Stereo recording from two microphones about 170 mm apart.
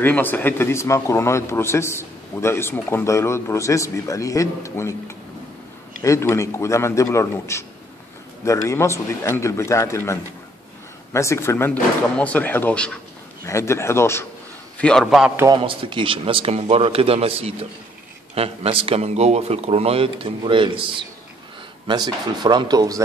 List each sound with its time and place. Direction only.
0.0 s speech: 10° left (ahead or behind)
11.1 s speech: 15° left (ahead or behind)
14.8 s a man's voice: 5° left (ahead or behind)
15.5 s a man's voice: 30° right (ahead or behind)